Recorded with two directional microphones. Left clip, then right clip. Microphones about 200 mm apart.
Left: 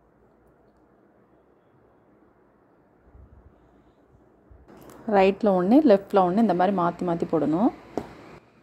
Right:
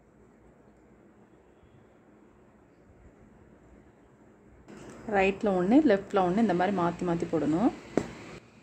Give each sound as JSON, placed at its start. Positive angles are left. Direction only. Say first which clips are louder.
{"t": 5.1, "sound": "a woman's voice", "louder": "left 6 dB", "side_deg": 25}